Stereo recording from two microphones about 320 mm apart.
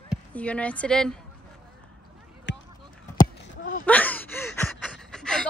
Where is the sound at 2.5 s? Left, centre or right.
Left.